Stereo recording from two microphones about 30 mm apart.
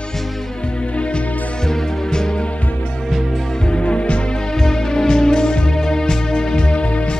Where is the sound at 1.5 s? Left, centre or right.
Centre.